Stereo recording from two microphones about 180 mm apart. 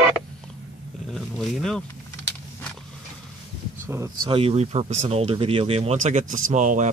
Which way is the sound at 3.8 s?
15° right (ahead or behind).